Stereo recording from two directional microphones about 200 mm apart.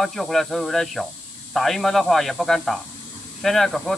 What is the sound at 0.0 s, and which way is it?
Speech, centre (ahead or behind).